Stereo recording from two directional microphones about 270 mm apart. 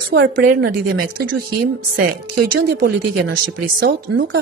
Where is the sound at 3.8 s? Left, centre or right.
Right.